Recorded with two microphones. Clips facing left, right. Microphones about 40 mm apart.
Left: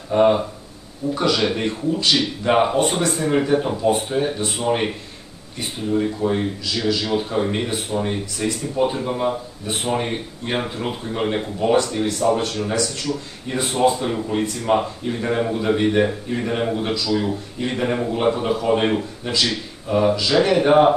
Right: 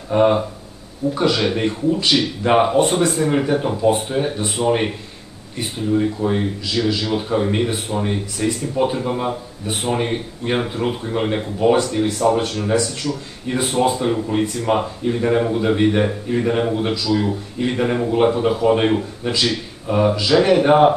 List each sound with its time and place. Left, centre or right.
0.1 s a man's voice: centre
11.7 s a man's voice: centre
13.5 s a man's voice: centre
19.3 s a man's voice: centre